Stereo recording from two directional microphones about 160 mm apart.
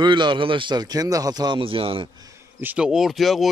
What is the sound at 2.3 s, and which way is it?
Speech, 10° right (ahead or behind).